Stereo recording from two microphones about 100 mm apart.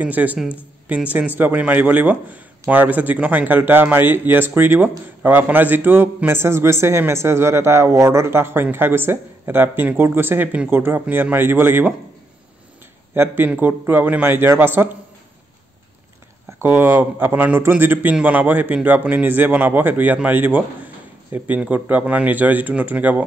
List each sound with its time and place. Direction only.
0.0 s speech: 15° right (ahead or behind)
13.1 s speech: 20° right (ahead or behind)
16.6 s speech: 20° right (ahead or behind)